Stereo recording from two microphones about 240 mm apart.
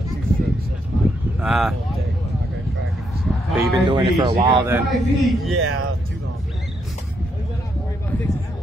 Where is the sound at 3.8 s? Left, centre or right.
Centre.